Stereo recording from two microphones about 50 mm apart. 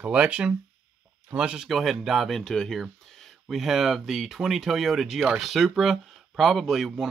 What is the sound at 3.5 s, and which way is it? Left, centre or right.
Speech, centre.